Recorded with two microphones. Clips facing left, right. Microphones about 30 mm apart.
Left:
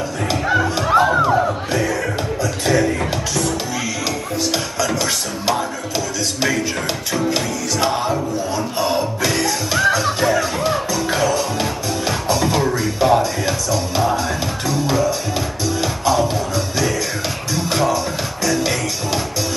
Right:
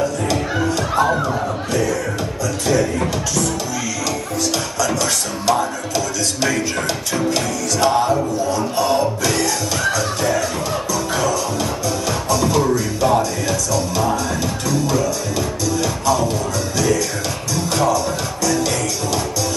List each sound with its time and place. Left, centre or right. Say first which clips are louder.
0.3 s music: left 2 dB; centre
4.4 s music: even; centre
14.7 s music: left 1 dB; left